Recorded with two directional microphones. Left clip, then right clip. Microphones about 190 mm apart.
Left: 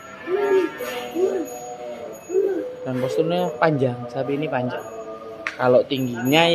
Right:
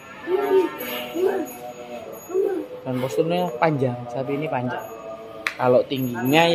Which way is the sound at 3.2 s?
10° left (ahead or behind).